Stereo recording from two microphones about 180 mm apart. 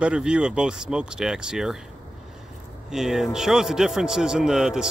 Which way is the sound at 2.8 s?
Centre (ahead or behind).